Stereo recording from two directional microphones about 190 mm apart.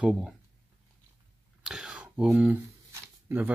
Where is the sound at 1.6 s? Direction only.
5° right (ahead or behind).